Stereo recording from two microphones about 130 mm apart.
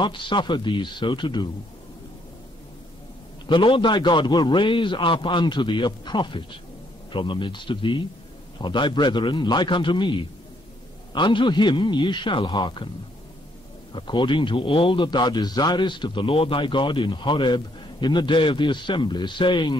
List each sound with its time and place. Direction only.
0.0 s a man's voice: 35° left (ahead or behind)
3.4 s a man's voice: 40° left (ahead or behind)
11.1 s a man's voice: 40° left (ahead or behind)
13.9 s a man's voice: 40° left (ahead or behind)